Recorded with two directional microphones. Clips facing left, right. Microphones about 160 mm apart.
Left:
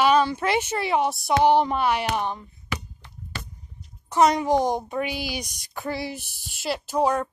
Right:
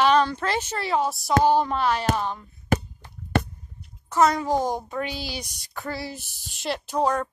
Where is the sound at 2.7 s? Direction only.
45° right (ahead or behind).